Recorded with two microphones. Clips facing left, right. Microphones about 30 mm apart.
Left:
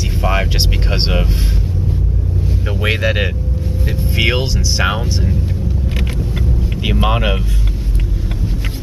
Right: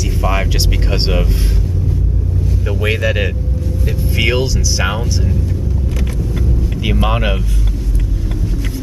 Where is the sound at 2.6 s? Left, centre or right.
Centre.